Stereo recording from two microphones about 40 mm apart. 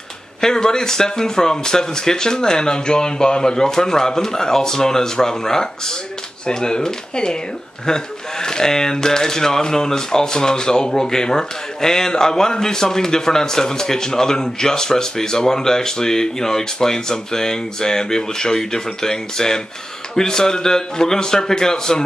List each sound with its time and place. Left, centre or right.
0.4 s speech: centre